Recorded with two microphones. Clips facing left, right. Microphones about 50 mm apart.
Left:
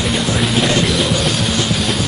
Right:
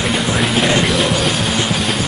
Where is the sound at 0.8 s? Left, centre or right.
Centre.